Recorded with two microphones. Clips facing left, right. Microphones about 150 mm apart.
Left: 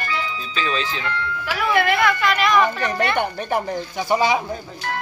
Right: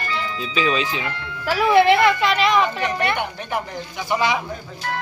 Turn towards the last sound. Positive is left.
turn(degrees=35)  # may be behind; listen again after turning